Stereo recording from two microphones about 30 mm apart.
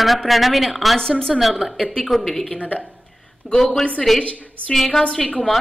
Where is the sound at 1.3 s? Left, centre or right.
Centre.